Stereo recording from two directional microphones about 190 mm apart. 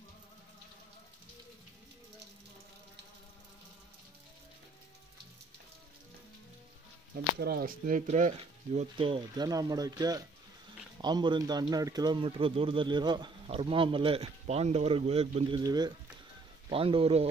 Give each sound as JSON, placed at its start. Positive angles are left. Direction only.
{"t": 7.3, "sound": "speech", "side_deg": -55}